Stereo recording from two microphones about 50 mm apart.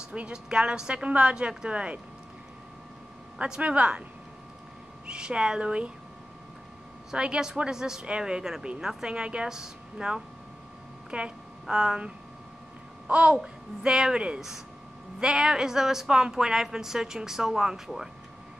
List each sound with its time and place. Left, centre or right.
0.0 s a woman's voice: right
3.3 s speech: centre
3.6 s speech: right
5.0 s a woman's voice: centre
7.1 s a woman's voice: centre
13.0 s a child's voice: right
13.4 s a woman's voice: centre